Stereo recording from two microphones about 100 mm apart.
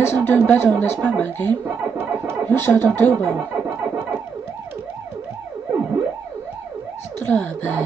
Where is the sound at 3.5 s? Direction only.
20° right (ahead or behind).